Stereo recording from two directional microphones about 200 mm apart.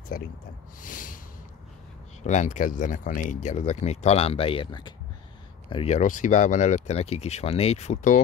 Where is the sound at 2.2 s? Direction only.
35° left (ahead or behind).